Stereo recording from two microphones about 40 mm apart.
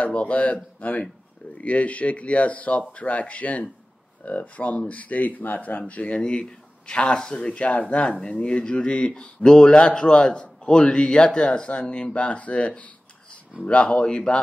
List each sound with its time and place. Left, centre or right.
0.0 s speech: left
6.9 s speech: left